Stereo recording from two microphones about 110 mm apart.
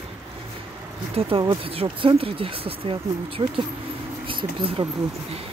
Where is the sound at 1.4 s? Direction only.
50° right (ahead or behind).